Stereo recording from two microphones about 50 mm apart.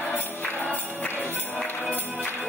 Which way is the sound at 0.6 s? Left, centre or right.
Left.